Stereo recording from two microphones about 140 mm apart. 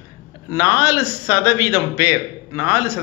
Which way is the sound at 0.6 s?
25° left (ahead or behind).